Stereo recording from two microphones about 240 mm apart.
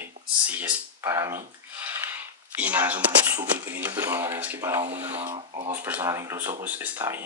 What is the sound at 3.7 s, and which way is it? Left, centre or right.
Speech, centre.